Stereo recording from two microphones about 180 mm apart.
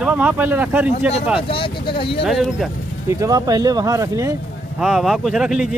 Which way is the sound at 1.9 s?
30° left (ahead or behind).